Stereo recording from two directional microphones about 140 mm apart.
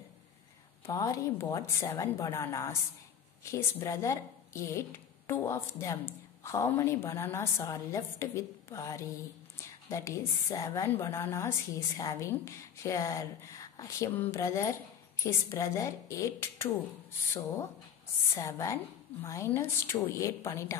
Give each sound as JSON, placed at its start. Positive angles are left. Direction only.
{"t": 0.8, "sound": "speech", "side_deg": 25}
{"t": 18.3, "sound": "speech", "side_deg": 20}